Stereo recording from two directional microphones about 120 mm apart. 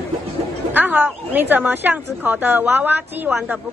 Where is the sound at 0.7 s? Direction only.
15° right (ahead or behind).